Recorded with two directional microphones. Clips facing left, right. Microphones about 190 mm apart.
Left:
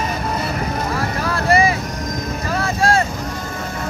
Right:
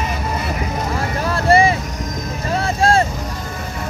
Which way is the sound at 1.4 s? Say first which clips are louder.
Right 3 dB; 30° right (ahead or behind).